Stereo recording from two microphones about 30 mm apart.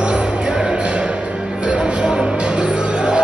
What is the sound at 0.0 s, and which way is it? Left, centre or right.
Music, right.